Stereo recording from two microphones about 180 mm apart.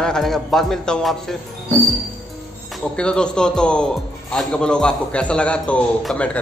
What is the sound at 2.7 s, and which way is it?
Speech, 5° left (ahead or behind).